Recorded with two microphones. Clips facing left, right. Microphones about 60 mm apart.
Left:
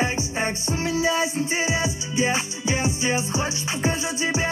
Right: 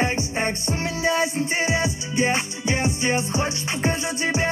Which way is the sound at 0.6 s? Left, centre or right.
Right.